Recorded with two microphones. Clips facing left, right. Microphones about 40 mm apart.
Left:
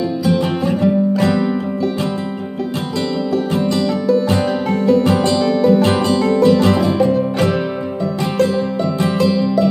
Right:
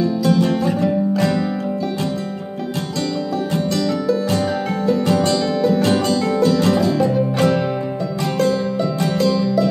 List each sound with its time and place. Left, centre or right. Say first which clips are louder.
0.2 s music: left 1 dB; centre
4.6 s music: left 5 dB; centre
5.0 s music: left 2 dB; left
5.4 s music: left 4 dB; centre
5.8 s music: left 2 dB; left
8.2 s music: left 1 dB; centre